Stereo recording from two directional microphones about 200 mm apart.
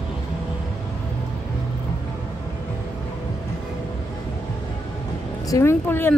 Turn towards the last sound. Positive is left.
turn(degrees=10)  # may be behind; listen again after turning